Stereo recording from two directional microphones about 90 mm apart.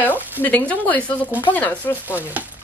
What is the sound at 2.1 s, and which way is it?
Speech, 15° right (ahead or behind).